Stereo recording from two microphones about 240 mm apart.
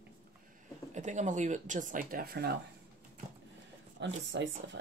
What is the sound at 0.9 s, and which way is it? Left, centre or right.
Speech, right.